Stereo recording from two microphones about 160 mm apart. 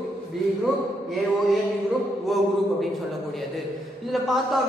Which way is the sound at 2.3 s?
Centre (ahead or behind).